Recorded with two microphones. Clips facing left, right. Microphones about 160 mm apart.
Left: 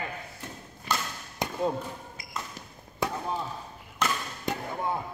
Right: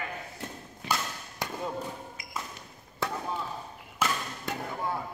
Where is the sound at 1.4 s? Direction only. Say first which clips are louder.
Left 3 dB; 20° left (ahead or behind).